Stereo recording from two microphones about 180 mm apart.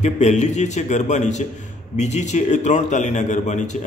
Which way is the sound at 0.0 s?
40° left (ahead or behind).